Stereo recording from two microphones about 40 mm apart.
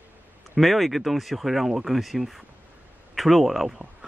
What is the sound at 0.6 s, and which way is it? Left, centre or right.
Speech, centre.